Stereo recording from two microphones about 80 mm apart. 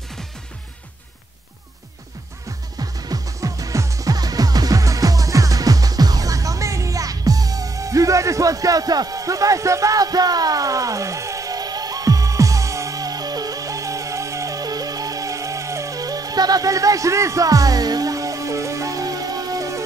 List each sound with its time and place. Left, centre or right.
2.8 s music: right